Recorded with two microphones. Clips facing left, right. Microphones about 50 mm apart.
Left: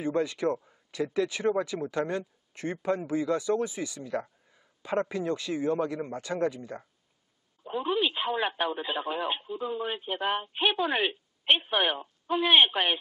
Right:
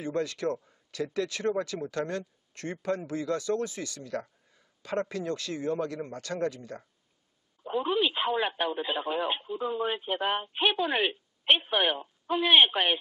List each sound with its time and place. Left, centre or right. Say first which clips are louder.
0.0 s speech: left 3 dB; centre
7.6 s speech: right 1 dB; centre